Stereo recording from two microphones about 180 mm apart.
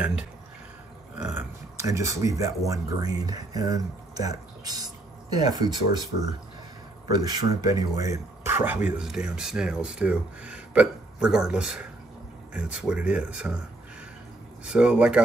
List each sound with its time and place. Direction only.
1.1 s speech: 10° right (ahead or behind)
7.1 s speech: 20° right (ahead or behind); by 13.5 s 5° right (ahead or behind)
14.6 s speech: 5° right (ahead or behind)